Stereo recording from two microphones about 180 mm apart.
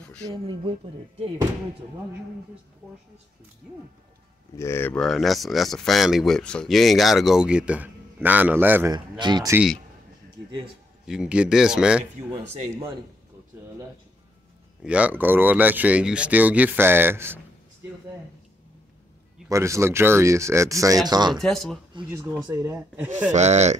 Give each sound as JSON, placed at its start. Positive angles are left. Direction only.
{"t": 0.3, "sound": "speech", "side_deg": -30}
{"t": 4.6, "sound": "speech", "side_deg": 15}
{"t": 8.9, "sound": "speech", "side_deg": -25}
{"t": 11.1, "sound": "speech", "side_deg": -5}
{"t": 14.8, "sound": "speech", "side_deg": -5}
{"t": 19.5, "sound": "speech", "side_deg": -15}
{"t": 21.4, "sound": "speech", "side_deg": 0}
{"t": 22.1, "sound": "speech", "side_deg": -20}
{"t": 23.3, "sound": "speech", "side_deg": -40}